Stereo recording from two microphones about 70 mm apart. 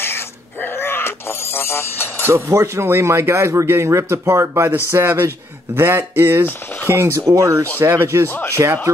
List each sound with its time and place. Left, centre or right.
0.0 s music: left
2.2 s speech: right
7.8 s speech: right